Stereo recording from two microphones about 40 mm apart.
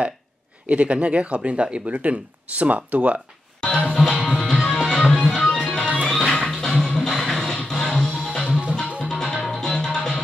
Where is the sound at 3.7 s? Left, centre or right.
Centre.